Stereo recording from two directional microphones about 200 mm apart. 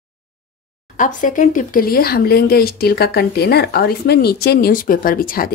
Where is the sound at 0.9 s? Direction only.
40° left (ahead or behind).